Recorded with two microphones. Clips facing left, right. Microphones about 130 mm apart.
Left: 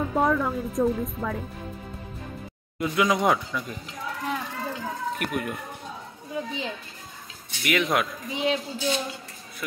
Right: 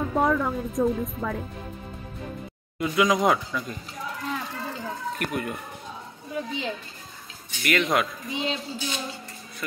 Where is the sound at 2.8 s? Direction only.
Centre (ahead or behind).